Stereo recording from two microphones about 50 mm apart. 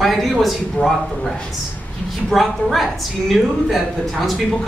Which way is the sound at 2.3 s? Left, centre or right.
Centre.